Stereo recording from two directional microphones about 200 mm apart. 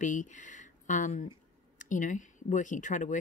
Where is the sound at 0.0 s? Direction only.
40° left (ahead or behind).